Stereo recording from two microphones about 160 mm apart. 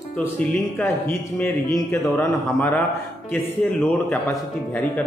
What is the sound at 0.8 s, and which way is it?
Speech, 5° left (ahead or behind).